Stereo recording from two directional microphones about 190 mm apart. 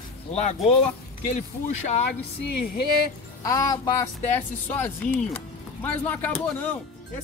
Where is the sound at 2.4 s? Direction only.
65° left (ahead or behind).